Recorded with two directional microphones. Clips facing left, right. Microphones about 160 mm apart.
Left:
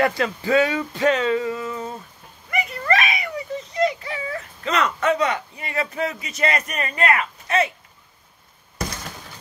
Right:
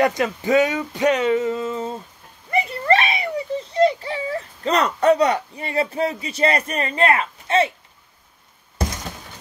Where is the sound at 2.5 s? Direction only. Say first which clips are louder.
Right 4 dB; 30° right (ahead or behind).